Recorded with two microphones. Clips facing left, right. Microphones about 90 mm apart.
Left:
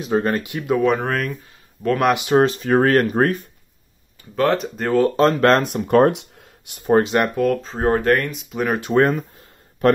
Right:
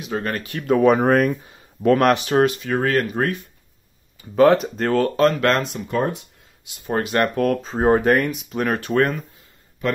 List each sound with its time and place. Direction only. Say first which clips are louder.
0.0 s speech: left 6 dB; 30° left (ahead or behind)
0.7 s speech: right 3 dB; 5° right (ahead or behind)
1.0 s speech: right 7 dB; 20° right (ahead or behind)
1.8 s speech: right 2 dB; centre (ahead or behind)
2.1 s speech: left 2 dB; 20° left (ahead or behind)
2.4 s speech: left 3 dB; 40° left (ahead or behind)
4.4 s speech: right 4 dB; centre (ahead or behind)
4.9 s speech: left 2 dB; 25° left (ahead or behind)
5.6 s speech: left 8 dB; 55° left (ahead or behind)
6.9 s speech: left 4 dB; 25° left (ahead or behind)
7.6 s speech: right 1 dB; 10° right (ahead or behind)
8.7 s speech: left 4 dB; 20° left (ahead or behind)
9.8 s a man's voice: left 7 dB; 50° left (ahead or behind)